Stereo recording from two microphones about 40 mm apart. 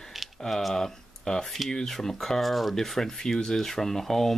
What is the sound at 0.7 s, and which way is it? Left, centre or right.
Speech, centre.